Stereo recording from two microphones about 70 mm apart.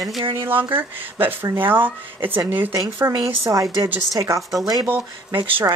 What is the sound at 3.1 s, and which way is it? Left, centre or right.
A woman's voice, right.